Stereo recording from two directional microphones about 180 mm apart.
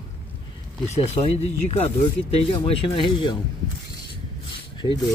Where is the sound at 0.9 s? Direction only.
35° left (ahead or behind).